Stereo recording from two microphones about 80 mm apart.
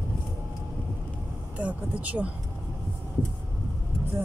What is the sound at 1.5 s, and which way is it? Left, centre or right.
Speech, centre.